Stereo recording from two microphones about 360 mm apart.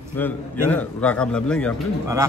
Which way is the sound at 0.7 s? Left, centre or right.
Centre.